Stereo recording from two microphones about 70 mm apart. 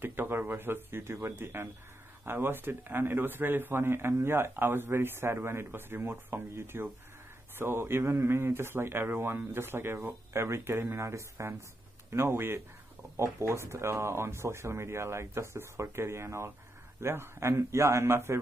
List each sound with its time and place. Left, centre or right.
0.0 s a man's voice: right